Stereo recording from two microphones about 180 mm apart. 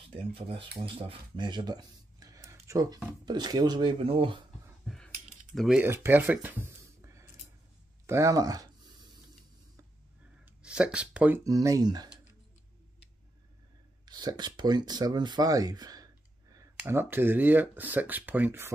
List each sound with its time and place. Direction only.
0.1 s speech: 30° right (ahead or behind)
4.8 s a sound: 5° left (ahead or behind)
5.5 s speech: centre (ahead or behind)
5.8 s speech: 10° right (ahead or behind)
8.1 s a sound: 15° right (ahead or behind)
10.4 s speech: 5° right (ahead or behind); by 12.1 s 20° right (ahead or behind)
14.0 s speech: 20° right (ahead or behind)